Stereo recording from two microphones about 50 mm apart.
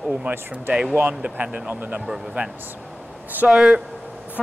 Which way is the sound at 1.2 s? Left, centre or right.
Right.